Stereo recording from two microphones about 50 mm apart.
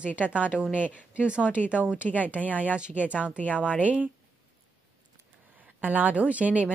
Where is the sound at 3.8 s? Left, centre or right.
Right.